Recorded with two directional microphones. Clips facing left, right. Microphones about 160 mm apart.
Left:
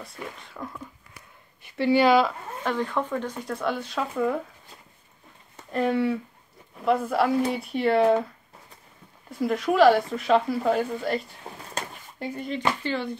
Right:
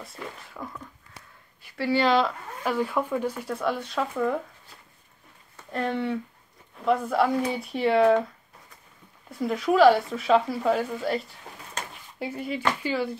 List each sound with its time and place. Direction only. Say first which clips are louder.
0.0 s speech: left 1 dB; centre (ahead or behind)
1.6 s speech: left 4 dB; 20° left (ahead or behind)
2.6 s speech: right 1 dB; 5° right (ahead or behind)
5.7 s speech: left 4 dB; 5° left (ahead or behind)
9.4 s speech: even; centre (ahead or behind)
12.2 s speech: even; 5° right (ahead or behind)